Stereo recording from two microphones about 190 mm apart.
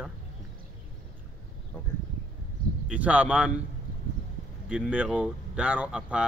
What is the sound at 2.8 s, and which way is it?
Speech, 5° right (ahead or behind).